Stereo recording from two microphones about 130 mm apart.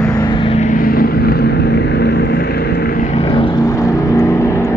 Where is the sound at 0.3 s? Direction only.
40° left (ahead or behind).